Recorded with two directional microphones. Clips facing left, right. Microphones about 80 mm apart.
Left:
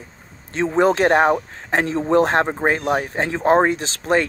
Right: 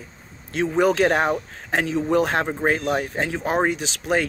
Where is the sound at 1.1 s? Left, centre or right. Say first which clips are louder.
Left 5 dB; left.